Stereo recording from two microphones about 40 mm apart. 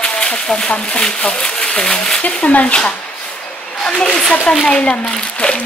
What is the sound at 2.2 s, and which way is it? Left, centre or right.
Speech, left.